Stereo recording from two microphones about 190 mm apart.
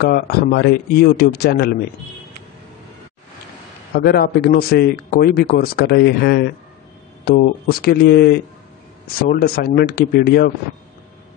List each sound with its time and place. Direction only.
0.0 s a man's voice: 55° left (ahead or behind)
3.9 s a man's voice: 55° left (ahead or behind)